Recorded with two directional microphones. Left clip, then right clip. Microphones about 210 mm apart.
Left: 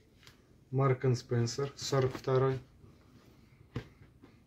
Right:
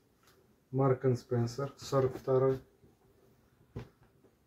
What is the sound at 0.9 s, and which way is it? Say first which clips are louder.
Speech: right 1 dB; 25° left (ahead or behind).